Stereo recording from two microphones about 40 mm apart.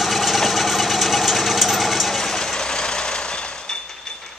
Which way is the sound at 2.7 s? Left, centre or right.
Left.